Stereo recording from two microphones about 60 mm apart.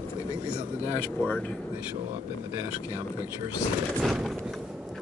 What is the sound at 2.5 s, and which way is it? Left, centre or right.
Speech, right.